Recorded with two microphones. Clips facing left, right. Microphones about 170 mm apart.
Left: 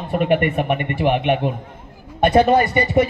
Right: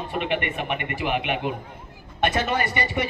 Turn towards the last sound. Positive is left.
turn(degrees=40)  # may be behind; listen again after turning